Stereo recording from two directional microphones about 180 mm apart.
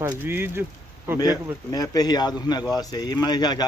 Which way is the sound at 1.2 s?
20° left (ahead or behind).